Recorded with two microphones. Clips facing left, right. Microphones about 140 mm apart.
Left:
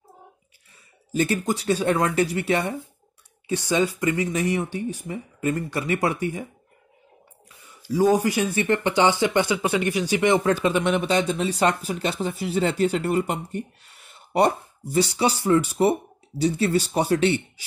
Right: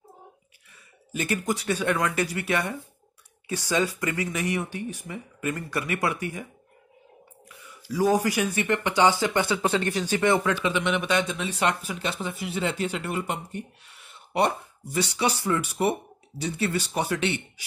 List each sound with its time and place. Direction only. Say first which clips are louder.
1.1 s speech: left 4 dB; 30° left (ahead or behind)
7.4 s speech: left 5 dB; 25° left (ahead or behind)
10.4 s speech: left 4 dB; 40° left (ahead or behind)